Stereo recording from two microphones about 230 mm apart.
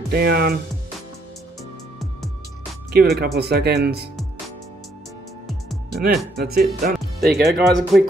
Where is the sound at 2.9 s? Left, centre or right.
Right.